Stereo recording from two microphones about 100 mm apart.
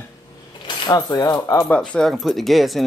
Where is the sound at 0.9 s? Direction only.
40° left (ahead or behind).